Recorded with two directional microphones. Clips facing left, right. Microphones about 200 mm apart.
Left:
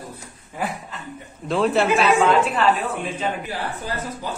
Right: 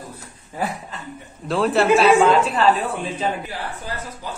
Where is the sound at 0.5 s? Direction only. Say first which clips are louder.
Right 2 dB; 35° right (ahead or behind).